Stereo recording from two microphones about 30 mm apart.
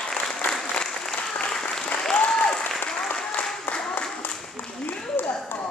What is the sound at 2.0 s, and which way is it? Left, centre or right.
Applause, left.